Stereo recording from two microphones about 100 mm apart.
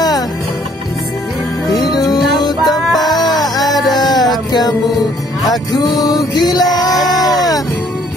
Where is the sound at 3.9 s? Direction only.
40° left (ahead or behind).